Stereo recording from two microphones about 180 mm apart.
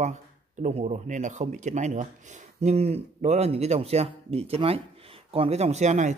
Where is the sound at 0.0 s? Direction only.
40° right (ahead or behind).